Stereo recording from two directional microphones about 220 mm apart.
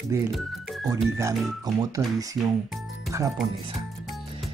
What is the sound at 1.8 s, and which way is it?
Speech, 15° right (ahead or behind).